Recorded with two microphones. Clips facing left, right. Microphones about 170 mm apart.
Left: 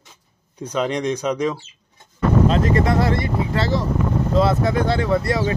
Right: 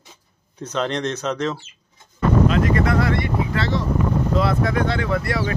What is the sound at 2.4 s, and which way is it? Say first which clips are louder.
Speech: left 1 dB; 30° left (ahead or behind).